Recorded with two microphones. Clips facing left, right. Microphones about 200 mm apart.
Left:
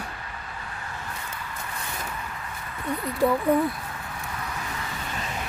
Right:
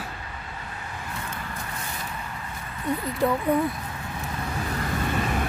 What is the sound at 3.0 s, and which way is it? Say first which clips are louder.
Speech: left 3 dB; centre (ahead or behind).